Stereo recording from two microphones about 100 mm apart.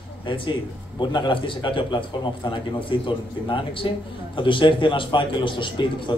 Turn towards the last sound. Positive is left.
turn(degrees=55)  # may be behind; listen again after turning